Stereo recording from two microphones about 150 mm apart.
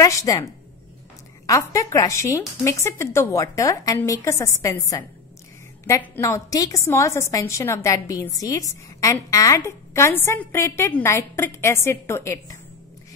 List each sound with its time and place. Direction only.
0.0 s a woman's voice: 25° left (ahead or behind)
1.5 s a woman's voice: 20° left (ahead or behind)